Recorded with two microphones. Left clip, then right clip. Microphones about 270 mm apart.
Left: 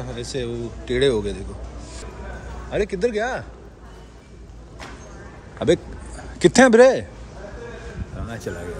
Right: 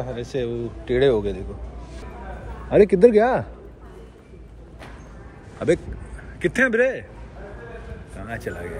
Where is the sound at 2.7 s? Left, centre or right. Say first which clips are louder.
Right 8 dB; right.